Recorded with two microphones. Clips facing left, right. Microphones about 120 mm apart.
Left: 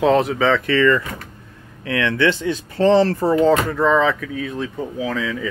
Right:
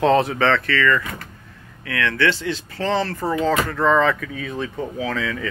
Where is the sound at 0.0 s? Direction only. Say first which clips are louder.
Left 1 dB; centre (ahead or behind).